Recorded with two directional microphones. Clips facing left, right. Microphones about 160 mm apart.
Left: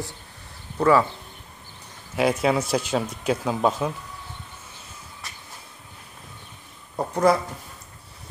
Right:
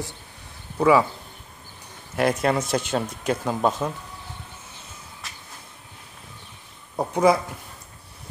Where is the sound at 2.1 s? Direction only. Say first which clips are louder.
Even; 5° left (ahead or behind).